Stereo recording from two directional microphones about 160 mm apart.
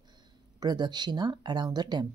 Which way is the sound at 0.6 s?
25° right (ahead or behind).